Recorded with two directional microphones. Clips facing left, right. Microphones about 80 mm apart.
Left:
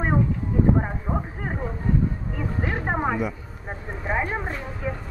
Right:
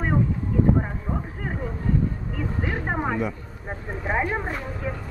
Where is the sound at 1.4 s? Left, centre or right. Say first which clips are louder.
Left 1 dB; centre.